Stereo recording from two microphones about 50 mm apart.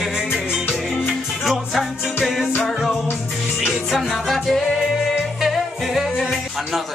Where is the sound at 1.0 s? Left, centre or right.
Centre.